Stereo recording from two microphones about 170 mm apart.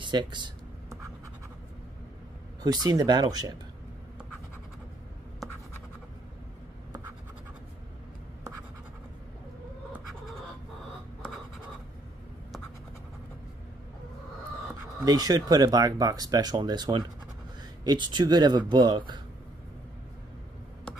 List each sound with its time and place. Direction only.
0.0 s a sound: 25° right (ahead or behind)
2.6 s speech: 25° right (ahead or behind)
15.0 s speech: 25° right (ahead or behind)